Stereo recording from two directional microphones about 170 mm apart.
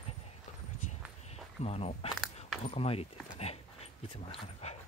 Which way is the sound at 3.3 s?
35° left (ahead or behind).